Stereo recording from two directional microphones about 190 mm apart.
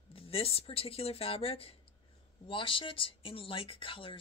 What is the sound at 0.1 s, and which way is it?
Speech, 30° left (ahead or behind).